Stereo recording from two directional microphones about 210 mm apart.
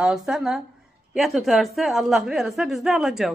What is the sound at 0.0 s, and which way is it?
A woman's voice, centre (ahead or behind).